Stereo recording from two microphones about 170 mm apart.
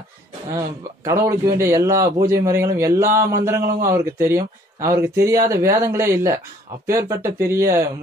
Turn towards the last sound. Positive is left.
turn(degrees=-15)  # may be behind; listen again after turning